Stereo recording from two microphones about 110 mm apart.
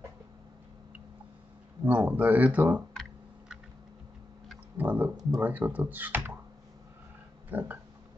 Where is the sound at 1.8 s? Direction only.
15° right (ahead or behind).